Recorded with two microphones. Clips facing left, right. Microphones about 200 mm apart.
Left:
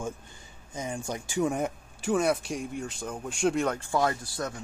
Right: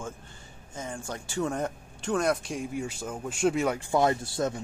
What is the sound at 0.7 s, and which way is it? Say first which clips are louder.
Speech: left 3 dB; 15° left (ahead or behind).